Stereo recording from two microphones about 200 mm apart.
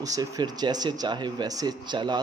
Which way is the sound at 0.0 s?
20° right (ahead or behind).